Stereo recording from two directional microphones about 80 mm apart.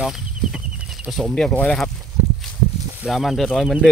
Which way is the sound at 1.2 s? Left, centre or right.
Centre.